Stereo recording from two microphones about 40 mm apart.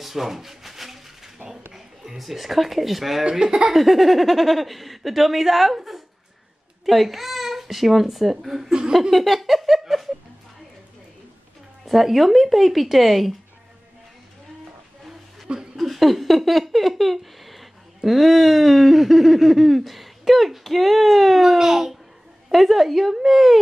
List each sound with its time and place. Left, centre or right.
0.0 s a sound: centre
2.1 s speech: centre
3.3 s speech: centre
3.7 s a child's voice: centre
9.1 s giggle: centre
11.8 s speech: centre
15.4 s a sound: right
15.7 s speech: centre